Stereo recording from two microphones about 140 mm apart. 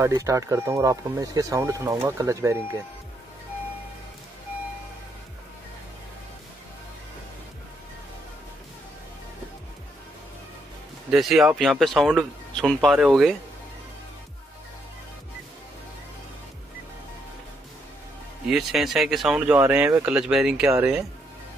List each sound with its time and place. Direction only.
0.0 s speech: 25° right (ahead or behind)
11.1 s speech: centre (ahead or behind)
18.5 s speech: centre (ahead or behind)